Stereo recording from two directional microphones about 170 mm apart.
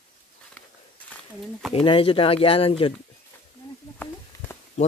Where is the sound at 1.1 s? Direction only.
5° left (ahead or behind).